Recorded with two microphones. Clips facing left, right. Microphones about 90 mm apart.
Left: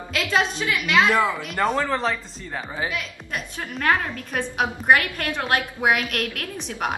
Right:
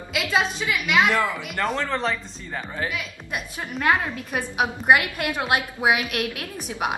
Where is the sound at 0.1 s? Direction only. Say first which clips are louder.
Left 1 dB; 5° right (ahead or behind).